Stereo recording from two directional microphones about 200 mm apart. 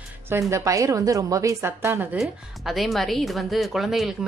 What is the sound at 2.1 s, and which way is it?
Speech, centre (ahead or behind).